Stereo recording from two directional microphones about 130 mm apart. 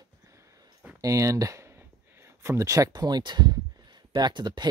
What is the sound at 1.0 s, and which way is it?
Speech, 25° right (ahead or behind).